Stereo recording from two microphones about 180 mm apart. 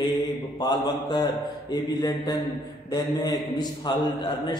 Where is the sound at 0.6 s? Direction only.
25° left (ahead or behind).